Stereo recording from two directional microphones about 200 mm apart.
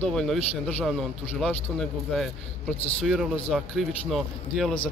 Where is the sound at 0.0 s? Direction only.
Centre (ahead or behind).